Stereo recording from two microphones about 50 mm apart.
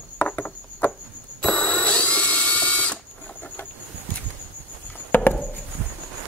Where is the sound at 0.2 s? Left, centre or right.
Left.